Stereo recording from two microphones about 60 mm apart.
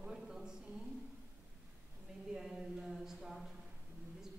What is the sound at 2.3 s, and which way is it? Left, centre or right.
Speech, centre.